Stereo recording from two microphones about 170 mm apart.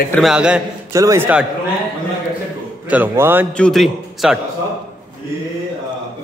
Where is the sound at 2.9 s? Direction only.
10° right (ahead or behind).